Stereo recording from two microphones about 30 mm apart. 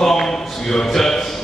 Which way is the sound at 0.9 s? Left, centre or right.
Centre.